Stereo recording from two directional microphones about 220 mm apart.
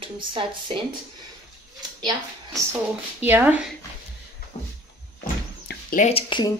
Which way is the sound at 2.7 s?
10° right (ahead or behind).